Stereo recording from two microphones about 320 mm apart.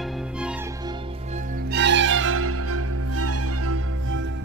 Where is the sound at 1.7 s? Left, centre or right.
Right.